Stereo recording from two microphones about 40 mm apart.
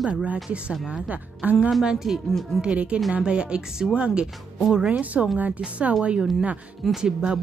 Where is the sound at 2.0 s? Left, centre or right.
Centre.